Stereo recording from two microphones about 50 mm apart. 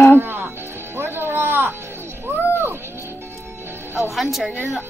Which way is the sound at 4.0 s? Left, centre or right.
Centre.